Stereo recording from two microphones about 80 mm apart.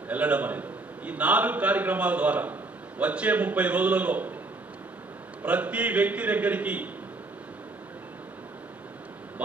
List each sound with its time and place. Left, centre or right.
0.1 s a man's voice: centre
5.4 s a man's voice: centre